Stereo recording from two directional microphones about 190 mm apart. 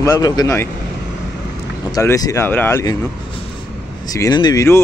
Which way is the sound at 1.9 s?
15° left (ahead or behind).